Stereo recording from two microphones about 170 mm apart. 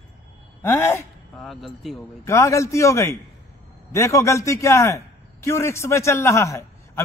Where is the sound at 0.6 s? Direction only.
15° left (ahead or behind).